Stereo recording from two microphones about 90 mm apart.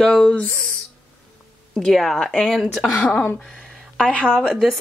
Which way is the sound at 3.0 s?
15° left (ahead or behind).